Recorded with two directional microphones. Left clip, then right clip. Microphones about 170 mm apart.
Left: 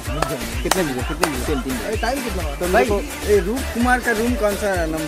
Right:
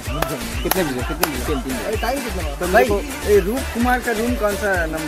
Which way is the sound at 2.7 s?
90° right.